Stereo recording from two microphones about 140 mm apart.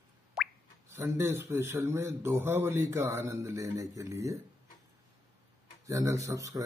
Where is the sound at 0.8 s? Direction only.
20° right (ahead or behind).